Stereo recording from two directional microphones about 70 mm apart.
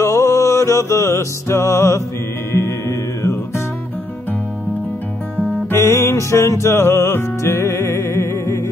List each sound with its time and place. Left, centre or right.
0.0 s music: left
5.7 s music: left